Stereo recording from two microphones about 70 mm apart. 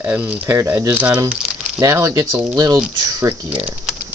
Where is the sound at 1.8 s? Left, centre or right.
Right.